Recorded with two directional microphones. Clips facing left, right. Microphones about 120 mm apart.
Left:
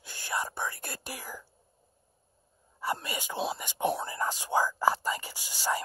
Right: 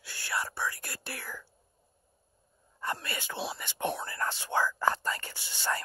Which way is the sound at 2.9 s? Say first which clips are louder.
Left 3 dB; 15° left (ahead or behind).